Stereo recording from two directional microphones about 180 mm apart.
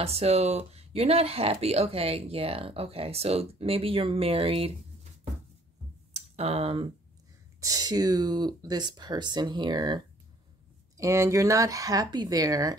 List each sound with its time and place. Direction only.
0.0 s speech: 35° right (ahead or behind)
6.1 s speech: 35° right (ahead or behind)
7.6 s speech: 20° right (ahead or behind)